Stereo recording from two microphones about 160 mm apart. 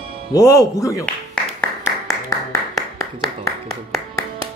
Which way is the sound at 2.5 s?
20° left (ahead or behind).